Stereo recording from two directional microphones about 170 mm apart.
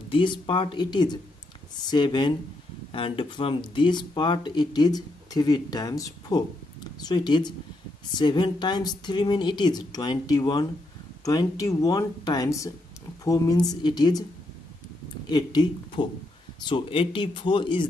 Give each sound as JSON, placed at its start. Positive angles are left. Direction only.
{"t": 0.1, "sound": "speech", "side_deg": 30}
{"t": 15.2, "sound": "speech", "side_deg": 25}